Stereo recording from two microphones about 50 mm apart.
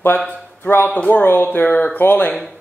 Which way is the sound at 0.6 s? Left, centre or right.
Left.